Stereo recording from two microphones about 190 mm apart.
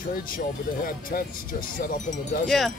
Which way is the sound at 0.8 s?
50° left (ahead or behind).